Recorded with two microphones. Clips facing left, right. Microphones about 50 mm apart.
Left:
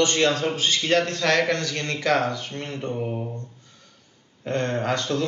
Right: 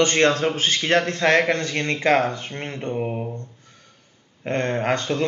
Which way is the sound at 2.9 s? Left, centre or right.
Right.